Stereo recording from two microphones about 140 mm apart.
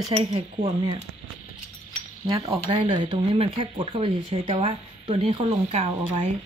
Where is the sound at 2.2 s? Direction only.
25° right (ahead or behind).